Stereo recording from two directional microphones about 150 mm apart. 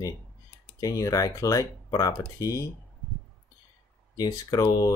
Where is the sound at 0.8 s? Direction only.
25° left (ahead or behind).